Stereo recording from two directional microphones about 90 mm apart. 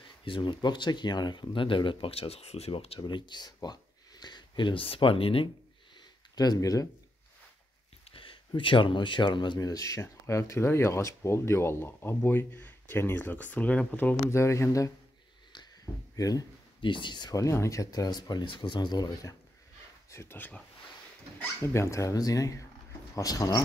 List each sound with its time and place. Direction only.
0.2 s speech: 65° left (ahead or behind); by 5.5 s 90° left
6.3 s speech: 45° left (ahead or behind)
8.1 s speech: 80° left; by 9.6 s 55° left (ahead or behind)
9.6 s speech: 40° left (ahead or behind); by 14.3 s 15° left (ahead or behind)
14.3 s speech: 30° left (ahead or behind)
16.8 s speech: 65° left (ahead or behind)
17.4 s speech: 35° left (ahead or behind); by 19.0 s 55° left (ahead or behind)
20.1 s speech: 30° left (ahead or behind)
21.4 s speech: 30° left (ahead or behind)